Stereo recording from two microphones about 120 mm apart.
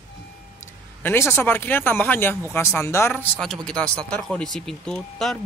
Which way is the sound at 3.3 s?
5° left (ahead or behind).